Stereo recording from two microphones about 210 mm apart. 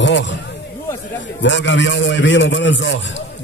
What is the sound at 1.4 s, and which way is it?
A man's voice, 60° left (ahead or behind).